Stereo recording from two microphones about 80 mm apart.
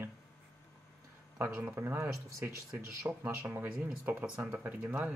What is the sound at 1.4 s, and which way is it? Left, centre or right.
Speech, right.